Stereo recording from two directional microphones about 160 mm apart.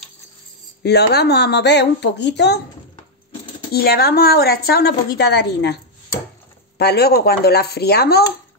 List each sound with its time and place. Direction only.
0.8 s speech: 90° left
3.7 s a woman's voice: 75° left (ahead or behind); by 5.8 s 90° left
6.8 s speech: 85° left